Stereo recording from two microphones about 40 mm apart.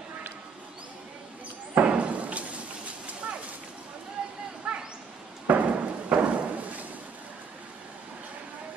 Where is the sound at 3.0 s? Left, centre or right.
Right.